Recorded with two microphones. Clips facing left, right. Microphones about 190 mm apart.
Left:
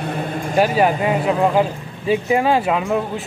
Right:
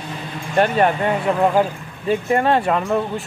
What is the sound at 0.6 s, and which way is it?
Speech, 5° left (ahead or behind).